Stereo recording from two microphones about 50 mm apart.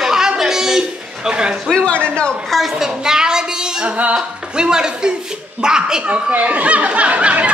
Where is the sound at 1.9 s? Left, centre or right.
Left.